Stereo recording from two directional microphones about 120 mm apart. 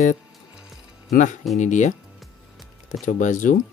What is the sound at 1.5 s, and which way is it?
Speech, 90° left.